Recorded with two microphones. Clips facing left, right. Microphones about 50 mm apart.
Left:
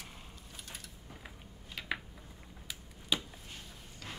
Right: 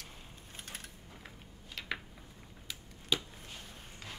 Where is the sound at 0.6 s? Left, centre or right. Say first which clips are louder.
Right 2 dB; right.